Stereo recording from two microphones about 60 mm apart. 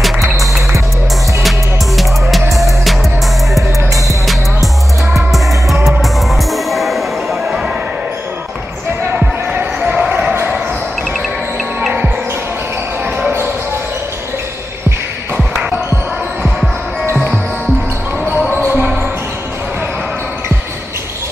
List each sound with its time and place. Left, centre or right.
2.5 s music: centre
5.1 s music: centre
9.1 s basketball bounce: right
18.7 s basketball bounce: right